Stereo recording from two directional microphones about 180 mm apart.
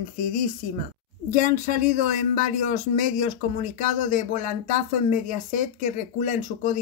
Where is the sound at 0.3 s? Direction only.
50° left (ahead or behind).